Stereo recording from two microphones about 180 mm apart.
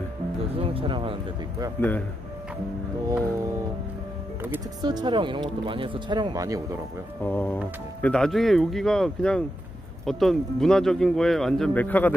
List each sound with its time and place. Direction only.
0.6 s speech: 30° right (ahead or behind)
1.8 s speech: 10° left (ahead or behind)
4.8 s speech: 25° right (ahead or behind)
7.2 s speech: 10° left (ahead or behind)